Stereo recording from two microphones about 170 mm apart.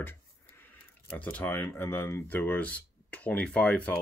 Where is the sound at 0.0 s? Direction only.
10° left (ahead or behind).